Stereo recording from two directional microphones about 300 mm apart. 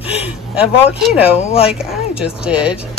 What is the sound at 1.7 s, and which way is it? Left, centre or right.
Speech, centre.